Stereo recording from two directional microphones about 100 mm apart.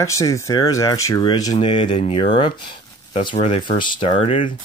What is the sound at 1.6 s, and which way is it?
Speech, 55° left (ahead or behind).